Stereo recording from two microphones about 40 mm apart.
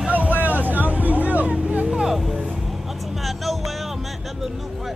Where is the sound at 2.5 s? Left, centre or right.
Centre.